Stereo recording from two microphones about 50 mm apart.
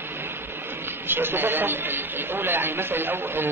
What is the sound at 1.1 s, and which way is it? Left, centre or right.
Speech, right.